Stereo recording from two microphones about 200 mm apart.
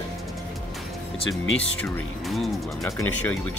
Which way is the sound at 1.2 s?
5° left (ahead or behind).